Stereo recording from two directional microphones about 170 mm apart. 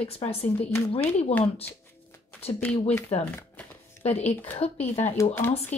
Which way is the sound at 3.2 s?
10° left (ahead or behind).